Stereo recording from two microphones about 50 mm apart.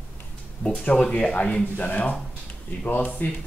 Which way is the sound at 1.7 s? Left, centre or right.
Left.